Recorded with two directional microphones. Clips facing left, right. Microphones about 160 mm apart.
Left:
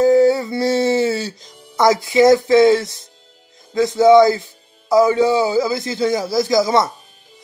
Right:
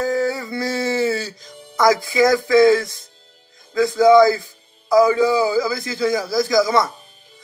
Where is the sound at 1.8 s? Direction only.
25° left (ahead or behind).